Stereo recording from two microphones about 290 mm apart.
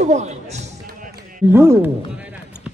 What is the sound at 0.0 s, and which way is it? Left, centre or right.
Speech, right.